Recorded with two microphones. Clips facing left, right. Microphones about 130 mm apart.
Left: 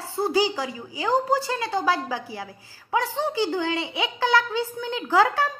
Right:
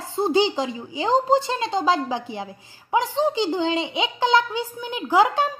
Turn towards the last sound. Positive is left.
turn(degrees=-15)  # may be behind; listen again after turning